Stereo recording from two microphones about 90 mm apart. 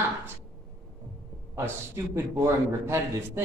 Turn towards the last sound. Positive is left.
turn(degrees=-30)  # may be behind; listen again after turning